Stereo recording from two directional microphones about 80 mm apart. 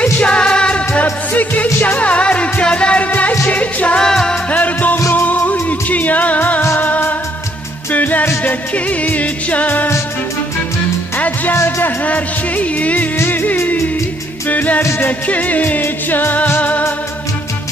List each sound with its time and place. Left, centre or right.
0.0 s music: centre
4.5 s music: centre
11.1 s music: left
11.5 s music: left
12.0 s music: centre
14.8 s music: left
15.0 s music: centre